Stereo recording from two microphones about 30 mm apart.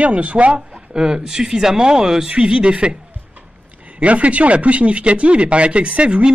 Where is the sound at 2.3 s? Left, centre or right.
Right.